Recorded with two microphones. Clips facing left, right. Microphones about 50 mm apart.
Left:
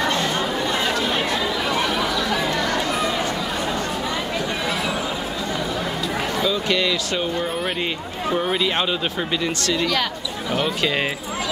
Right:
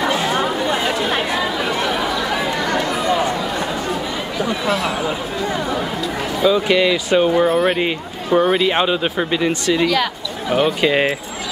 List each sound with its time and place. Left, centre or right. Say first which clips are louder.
0.0 s chatter: right 3 dB; centre
6.4 s speech: right 8 dB; centre